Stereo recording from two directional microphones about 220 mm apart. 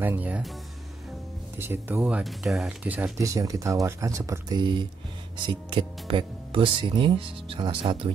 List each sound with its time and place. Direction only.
0.0 s speech: 10° right (ahead or behind)
1.6 s speech: 10° right (ahead or behind)